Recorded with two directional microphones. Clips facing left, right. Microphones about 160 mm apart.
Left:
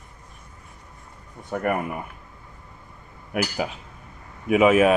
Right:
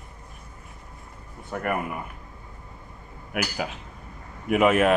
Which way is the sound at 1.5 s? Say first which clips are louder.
Left 3 dB; 10° left (ahead or behind).